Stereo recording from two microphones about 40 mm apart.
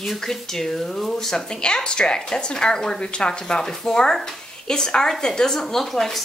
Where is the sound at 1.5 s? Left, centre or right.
Centre.